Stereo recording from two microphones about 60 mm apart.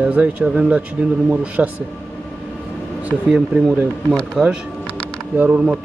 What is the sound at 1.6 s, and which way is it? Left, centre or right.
Speech, centre.